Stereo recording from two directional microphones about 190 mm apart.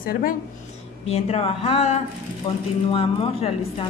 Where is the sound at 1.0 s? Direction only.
35° left (ahead or behind).